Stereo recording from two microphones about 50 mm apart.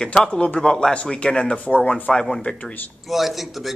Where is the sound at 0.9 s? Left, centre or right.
Centre.